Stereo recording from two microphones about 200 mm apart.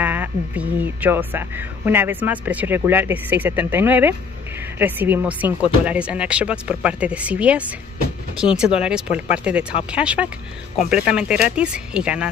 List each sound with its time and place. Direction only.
0.0 s speech: 10° right (ahead or behind)